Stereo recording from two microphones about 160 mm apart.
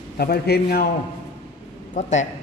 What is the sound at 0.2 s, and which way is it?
Speech, 80° left.